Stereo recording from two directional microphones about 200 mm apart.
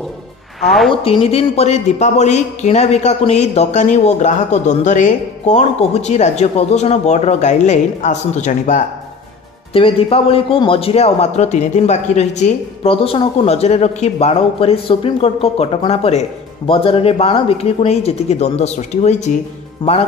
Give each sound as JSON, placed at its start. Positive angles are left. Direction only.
{"t": 0.6, "sound": "a woman's voice", "side_deg": 0}
{"t": 1.0, "sound": "speech", "side_deg": 30}
{"t": 9.7, "sound": "a man's voice", "side_deg": 30}